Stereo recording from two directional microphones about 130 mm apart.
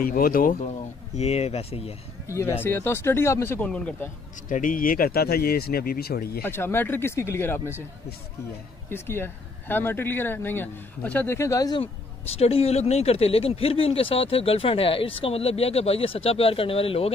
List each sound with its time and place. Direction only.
0.0 s speech: 90° left; by 2.0 s 50° left (ahead or behind)
2.2 s speech: 20° left (ahead or behind)
4.5 s speech: 90° left
6.4 s speech: 15° left (ahead or behind)
8.9 s speech: 20° left (ahead or behind)
12.4 s speech: 50° left (ahead or behind)